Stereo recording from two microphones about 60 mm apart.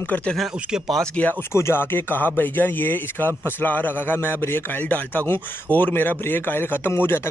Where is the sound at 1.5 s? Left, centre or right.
Left.